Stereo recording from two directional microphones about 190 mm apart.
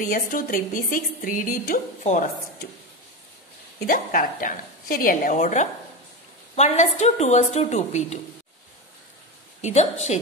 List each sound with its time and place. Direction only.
0.0 s a woman's voice: 45° left (ahead or behind)
3.8 s a woman's voice: 45° left (ahead or behind)
9.6 s a woman's voice: 35° left (ahead or behind)